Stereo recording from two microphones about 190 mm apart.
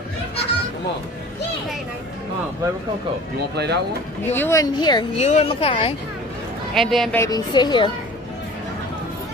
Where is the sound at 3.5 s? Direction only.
60° right (ahead or behind).